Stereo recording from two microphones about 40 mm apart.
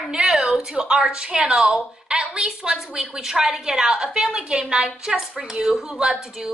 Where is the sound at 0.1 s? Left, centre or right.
Centre.